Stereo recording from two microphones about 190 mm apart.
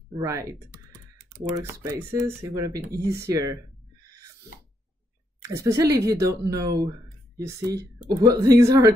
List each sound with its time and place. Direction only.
0.1 s speech: 15° right (ahead or behind)
1.6 s speech: 15° right (ahead or behind)
5.6 s speech: 15° right (ahead or behind)